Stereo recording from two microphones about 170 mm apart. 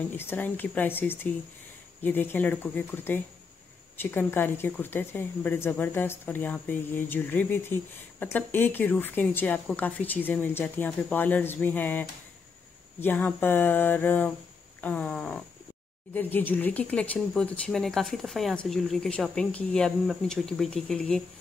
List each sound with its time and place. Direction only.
0.2 s speech: 10° left (ahead or behind)